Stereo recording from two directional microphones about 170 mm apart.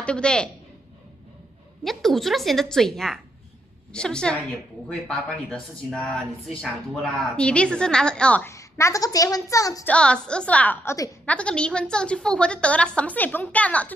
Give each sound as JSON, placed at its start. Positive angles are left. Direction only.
{"t": 0.0, "sound": "speech", "side_deg": 5}
{"t": 1.9, "sound": "speech", "side_deg": 0}
{"t": 8.5, "sound": "a woman's voice", "side_deg": 20}
{"t": 9.8, "sound": "a woman's voice", "side_deg": 5}